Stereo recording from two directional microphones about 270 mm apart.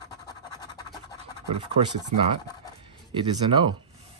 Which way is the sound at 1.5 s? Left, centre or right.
Centre.